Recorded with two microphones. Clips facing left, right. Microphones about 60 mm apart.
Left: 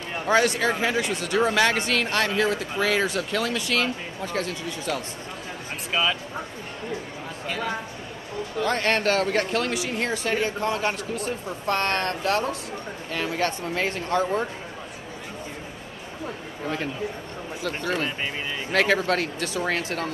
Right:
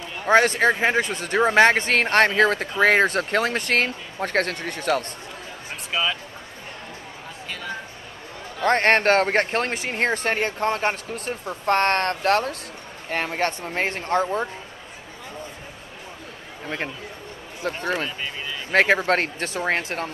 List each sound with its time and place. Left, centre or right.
0.3 s speech: right
5.9 s speech: centre
8.6 s speech: right
17.6 s speech: right